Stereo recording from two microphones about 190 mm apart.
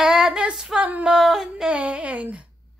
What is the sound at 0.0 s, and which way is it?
Female singing, 5° right (ahead or behind).